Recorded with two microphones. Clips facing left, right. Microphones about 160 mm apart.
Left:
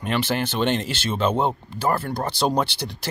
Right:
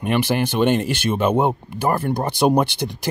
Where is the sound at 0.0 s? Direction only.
15° right (ahead or behind).